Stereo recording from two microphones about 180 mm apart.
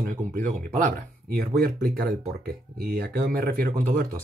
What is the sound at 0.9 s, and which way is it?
Speech, 55° right (ahead or behind).